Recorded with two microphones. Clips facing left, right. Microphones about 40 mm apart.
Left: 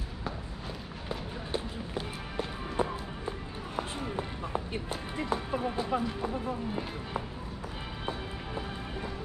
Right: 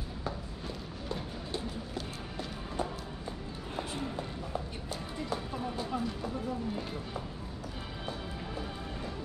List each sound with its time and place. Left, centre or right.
1.0 s music: left